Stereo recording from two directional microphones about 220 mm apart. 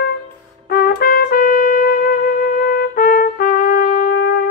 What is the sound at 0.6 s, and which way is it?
Trumpet, 45° left (ahead or behind).